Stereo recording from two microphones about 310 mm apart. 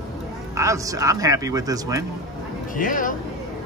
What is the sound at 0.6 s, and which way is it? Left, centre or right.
Speech, centre.